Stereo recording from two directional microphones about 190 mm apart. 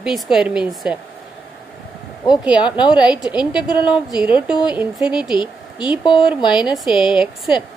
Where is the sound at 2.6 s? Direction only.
25° left (ahead or behind).